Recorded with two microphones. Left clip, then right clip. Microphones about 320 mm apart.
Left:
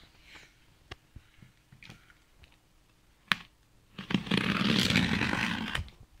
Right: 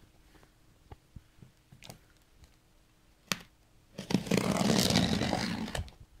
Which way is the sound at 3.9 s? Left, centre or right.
Centre.